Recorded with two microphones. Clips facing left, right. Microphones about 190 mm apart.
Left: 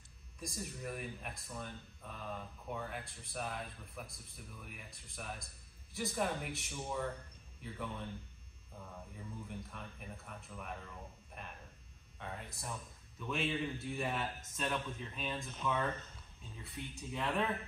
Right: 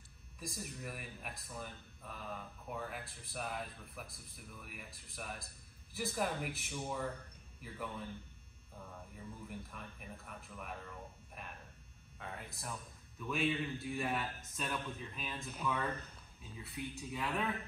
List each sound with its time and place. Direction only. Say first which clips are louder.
0.4 s speech: left 1 dB; centre (ahead or behind)
9.5 s speech: left 1 dB; centre (ahead or behind)